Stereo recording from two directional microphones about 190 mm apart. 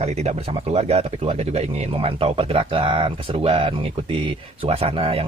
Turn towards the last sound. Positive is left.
turn(degrees=-30)  # may be behind; listen again after turning